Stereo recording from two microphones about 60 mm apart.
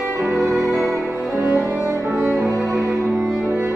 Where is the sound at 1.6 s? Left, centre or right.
Right.